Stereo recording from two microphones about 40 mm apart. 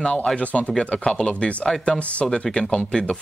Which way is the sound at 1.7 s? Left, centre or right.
Centre.